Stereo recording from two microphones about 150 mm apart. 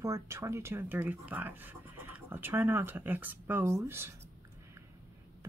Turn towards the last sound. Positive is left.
turn(degrees=-15)  # may be behind; listen again after turning